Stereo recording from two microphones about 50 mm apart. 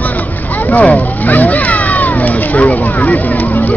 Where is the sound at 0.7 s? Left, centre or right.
Left.